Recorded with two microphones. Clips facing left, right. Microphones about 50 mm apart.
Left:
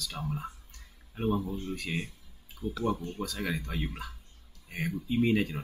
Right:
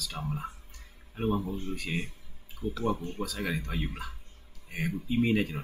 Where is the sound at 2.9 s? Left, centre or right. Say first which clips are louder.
Even; right.